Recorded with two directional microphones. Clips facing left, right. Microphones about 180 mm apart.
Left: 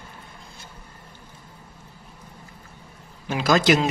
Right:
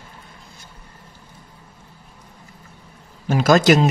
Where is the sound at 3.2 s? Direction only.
45° right (ahead or behind).